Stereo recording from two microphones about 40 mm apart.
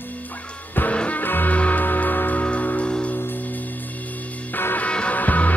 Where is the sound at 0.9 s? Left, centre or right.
Left.